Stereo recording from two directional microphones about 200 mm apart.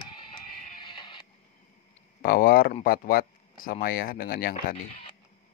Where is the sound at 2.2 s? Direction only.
45° left (ahead or behind).